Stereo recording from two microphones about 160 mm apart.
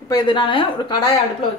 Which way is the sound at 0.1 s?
30° left (ahead or behind).